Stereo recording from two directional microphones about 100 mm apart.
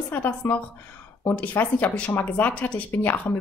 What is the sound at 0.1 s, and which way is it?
A woman's voice, 15° left (ahead or behind).